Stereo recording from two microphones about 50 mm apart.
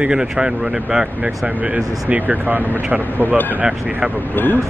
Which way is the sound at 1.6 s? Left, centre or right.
Right.